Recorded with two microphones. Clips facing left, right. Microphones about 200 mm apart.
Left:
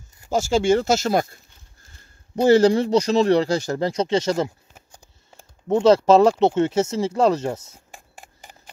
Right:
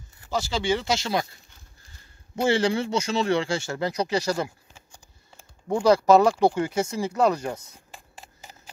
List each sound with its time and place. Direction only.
0.3 s speech: 45° left (ahead or behind)
2.4 s speech: 40° left (ahead or behind)
5.7 s speech: 25° left (ahead or behind)